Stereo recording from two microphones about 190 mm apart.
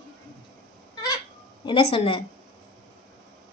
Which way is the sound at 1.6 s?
25° left (ahead or behind).